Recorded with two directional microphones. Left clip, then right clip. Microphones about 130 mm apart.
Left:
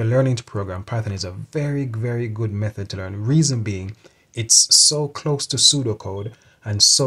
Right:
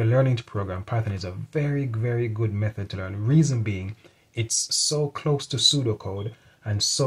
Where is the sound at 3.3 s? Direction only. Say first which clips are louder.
Left 3 dB; 50° left (ahead or behind).